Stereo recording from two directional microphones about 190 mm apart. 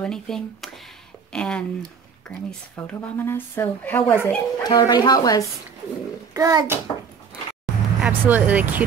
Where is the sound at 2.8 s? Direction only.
10° left (ahead or behind).